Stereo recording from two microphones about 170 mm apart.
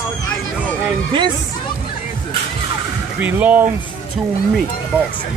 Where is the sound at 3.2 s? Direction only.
10° right (ahead or behind).